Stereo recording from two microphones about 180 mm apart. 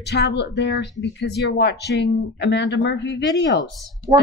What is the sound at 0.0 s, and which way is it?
Speech, 65° left (ahead or behind).